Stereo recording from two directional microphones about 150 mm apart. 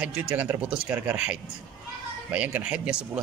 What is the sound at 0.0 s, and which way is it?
A man's voice, 10° right (ahead or behind).